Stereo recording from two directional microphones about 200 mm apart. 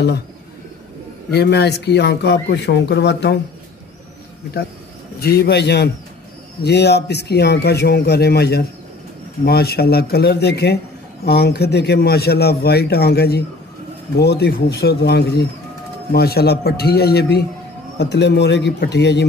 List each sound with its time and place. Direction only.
1.3 s speech: 55° left (ahead or behind)
5.2 s speech: 55° left (ahead or behind)